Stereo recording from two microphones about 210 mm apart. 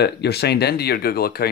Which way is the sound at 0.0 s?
50° left (ahead or behind).